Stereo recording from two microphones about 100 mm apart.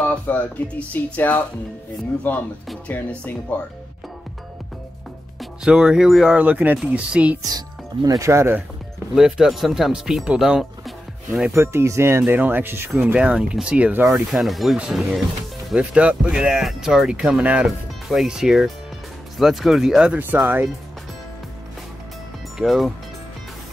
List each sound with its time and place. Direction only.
0.1 s speech: 15° left (ahead or behind)
5.4 s speech: 5° right (ahead or behind)
6.4 s speech: 15° right (ahead or behind)
7.4 s speech: 40° right (ahead or behind)
9.1 s speech: 5° right (ahead or behind)
11.5 s speech: 25° right (ahead or behind)
13.0 s speech: 10° right (ahead or behind)
14.1 s speech: centre (ahead or behind)
15.8 s speech: 15° right (ahead or behind)
17.6 s speech: centre (ahead or behind)
22.6 s speech: centre (ahead or behind)